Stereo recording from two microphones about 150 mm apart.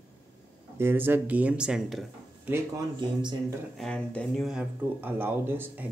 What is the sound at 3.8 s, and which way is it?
Speech, 5° left (ahead or behind).